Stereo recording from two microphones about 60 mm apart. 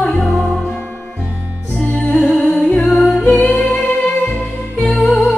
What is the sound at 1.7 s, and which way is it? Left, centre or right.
Music, left.